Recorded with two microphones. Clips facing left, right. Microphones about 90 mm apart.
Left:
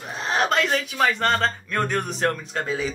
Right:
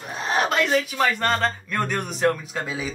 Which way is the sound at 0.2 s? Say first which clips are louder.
Even; 5° right (ahead or behind).